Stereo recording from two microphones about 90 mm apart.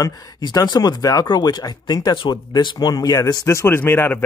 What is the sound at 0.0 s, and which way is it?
Speech, 50° left (ahead or behind).